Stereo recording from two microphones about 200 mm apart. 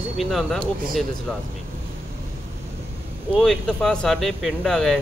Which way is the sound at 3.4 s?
Centre (ahead or behind).